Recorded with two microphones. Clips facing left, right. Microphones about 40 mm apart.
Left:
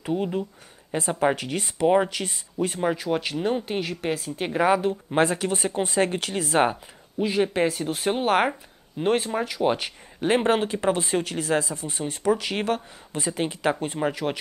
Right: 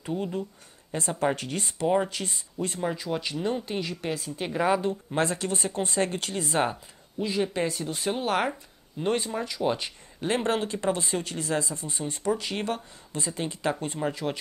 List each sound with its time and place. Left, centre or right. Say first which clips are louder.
0.0 s speech: left 4 dB; left
2.1 s speech: left 4 dB; centre
3.2 s speech: left 4 dB; left; by 13.2 s centre
13.2 s speech: left 5 dB; left